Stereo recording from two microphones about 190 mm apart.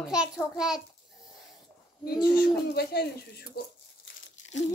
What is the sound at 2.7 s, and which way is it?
Speech, 55° left (ahead or behind).